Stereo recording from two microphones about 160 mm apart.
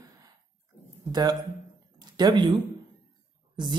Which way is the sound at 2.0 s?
25° right (ahead or behind).